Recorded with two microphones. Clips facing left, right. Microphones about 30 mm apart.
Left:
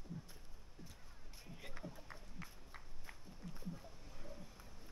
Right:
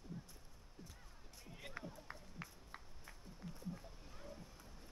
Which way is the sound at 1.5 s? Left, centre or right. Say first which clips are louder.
Right 1 dB; centre.